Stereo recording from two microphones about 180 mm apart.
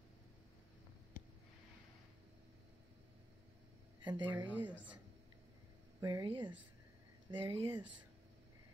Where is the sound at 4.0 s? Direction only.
25° right (ahead or behind).